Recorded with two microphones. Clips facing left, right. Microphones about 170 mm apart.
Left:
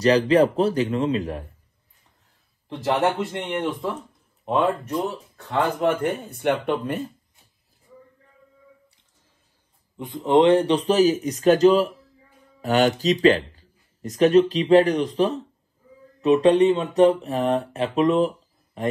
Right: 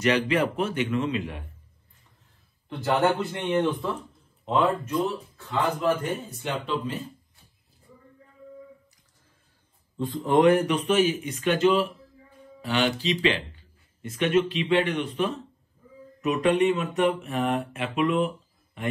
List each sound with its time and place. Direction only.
0.0 s speech: 35° left (ahead or behind)
2.8 s a man's voice: 20° left (ahead or behind)
5.8 s speech: 60° left (ahead or behind)
9.9 s a man's voice: 20° left (ahead or behind); by 18.9 s 35° left (ahead or behind)